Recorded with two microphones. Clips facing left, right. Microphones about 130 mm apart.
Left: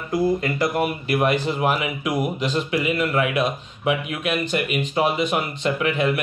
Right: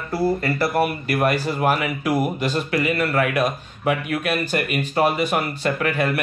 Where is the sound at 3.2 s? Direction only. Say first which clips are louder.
Right 1 dB; 45° right (ahead or behind).